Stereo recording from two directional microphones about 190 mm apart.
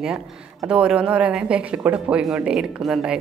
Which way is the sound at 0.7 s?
5° right (ahead or behind).